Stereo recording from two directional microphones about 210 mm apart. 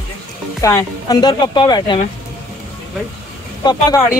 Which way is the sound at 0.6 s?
15° left (ahead or behind).